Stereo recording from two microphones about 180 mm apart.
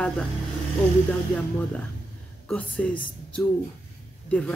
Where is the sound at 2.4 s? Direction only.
5° left (ahead or behind).